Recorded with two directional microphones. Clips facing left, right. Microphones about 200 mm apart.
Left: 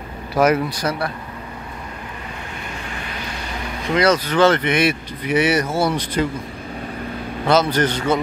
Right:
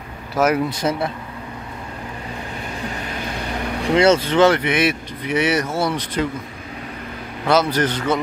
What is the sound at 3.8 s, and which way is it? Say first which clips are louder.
Speech: right 2 dB; 30° right (ahead or behind).